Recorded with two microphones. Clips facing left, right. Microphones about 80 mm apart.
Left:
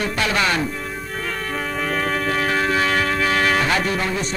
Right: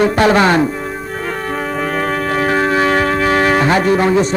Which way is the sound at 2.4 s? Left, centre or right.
Right.